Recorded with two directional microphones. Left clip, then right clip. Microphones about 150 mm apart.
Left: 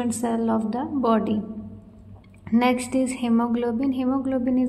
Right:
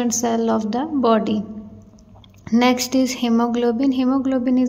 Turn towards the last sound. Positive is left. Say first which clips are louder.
# right 4 dB
turn(degrees=-25)  # may be behind; listen again after turning